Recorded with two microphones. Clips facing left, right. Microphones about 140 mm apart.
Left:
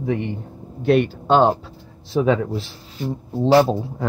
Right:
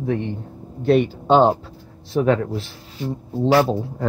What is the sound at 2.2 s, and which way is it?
Speech, 15° left (ahead or behind).